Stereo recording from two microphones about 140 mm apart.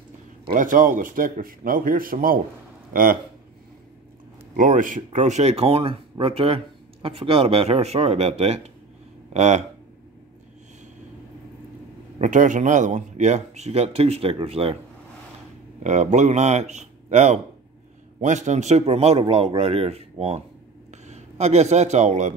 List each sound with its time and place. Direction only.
0.5 s a man's voice: 75° right (ahead or behind); by 3.2 s 90° right
4.6 s speech: 70° right (ahead or behind); by 9.7 s 55° right (ahead or behind)
12.2 s speech: 65° right (ahead or behind); by 14.8 s 45° right (ahead or behind)
15.8 s a man's voice: 55° right (ahead or behind)